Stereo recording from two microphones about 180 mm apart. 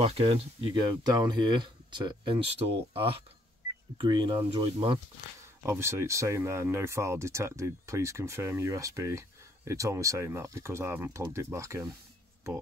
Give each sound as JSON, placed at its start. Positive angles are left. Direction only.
{"t": 0.0, "sound": "speech", "side_deg": -35}
{"t": 5.7, "sound": "speech", "side_deg": -15}